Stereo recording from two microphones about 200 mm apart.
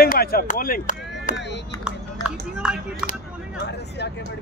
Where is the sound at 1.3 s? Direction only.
60° left (ahead or behind).